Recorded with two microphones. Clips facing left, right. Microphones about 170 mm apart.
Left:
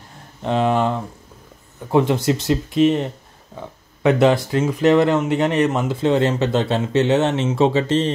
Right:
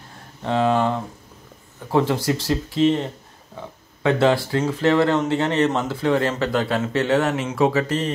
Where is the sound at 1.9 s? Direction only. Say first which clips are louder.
Left 3 dB; 20° left (ahead or behind).